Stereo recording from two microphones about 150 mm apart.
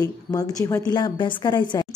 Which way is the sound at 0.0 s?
25° left (ahead or behind).